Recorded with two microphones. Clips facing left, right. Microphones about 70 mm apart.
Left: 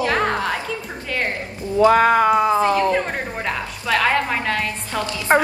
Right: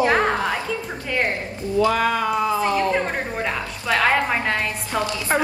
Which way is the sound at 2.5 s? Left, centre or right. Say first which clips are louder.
Left 4 dB; left.